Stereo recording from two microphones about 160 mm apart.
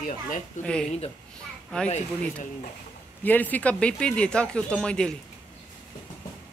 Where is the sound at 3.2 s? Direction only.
10° left (ahead or behind).